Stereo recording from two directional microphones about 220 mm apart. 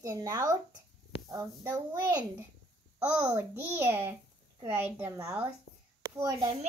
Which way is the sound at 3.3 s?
10° right (ahead or behind).